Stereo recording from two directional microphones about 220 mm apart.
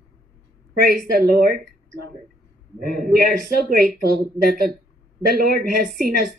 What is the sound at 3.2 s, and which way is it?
Speech, 40° right (ahead or behind).